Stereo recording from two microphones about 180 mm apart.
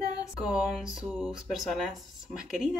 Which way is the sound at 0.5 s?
Centre (ahead or behind).